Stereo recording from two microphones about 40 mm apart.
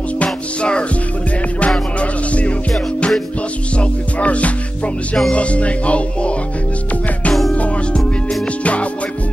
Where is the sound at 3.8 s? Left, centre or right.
Left.